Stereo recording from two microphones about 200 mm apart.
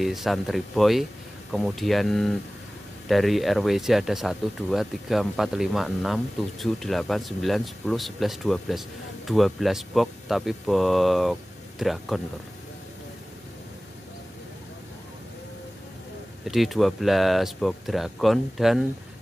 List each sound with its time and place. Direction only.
0.0 s speech: centre (ahead or behind)
16.4 s speech: centre (ahead or behind)